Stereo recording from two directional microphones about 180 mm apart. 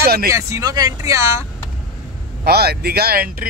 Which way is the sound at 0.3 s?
15° right (ahead or behind).